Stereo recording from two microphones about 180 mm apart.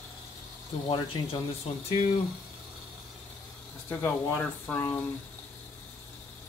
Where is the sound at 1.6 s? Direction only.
35° left (ahead or behind).